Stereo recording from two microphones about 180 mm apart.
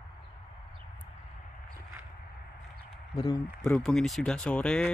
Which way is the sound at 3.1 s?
20° left (ahead or behind).